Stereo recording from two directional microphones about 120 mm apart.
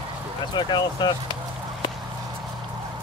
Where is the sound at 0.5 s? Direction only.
35° left (ahead or behind).